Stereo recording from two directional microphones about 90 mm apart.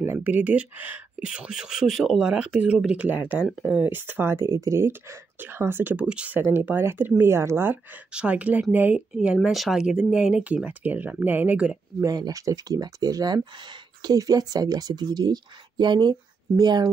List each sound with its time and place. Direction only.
0.0 s speech: 25° right (ahead or behind)
6.5 s speech: 25° right (ahead or behind)
8.1 s speech: 10° right (ahead or behind)
9.1 s speech: 10° right (ahead or behind)
12.0 s speech: 45° right (ahead or behind)